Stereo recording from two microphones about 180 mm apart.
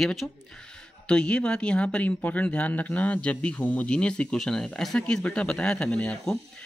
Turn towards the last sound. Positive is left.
turn(degrees=5)  # may be behind; listen again after turning